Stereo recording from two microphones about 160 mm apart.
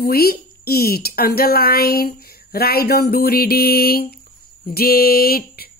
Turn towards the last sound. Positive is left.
turn(degrees=70)  # may be behind; listen again after turning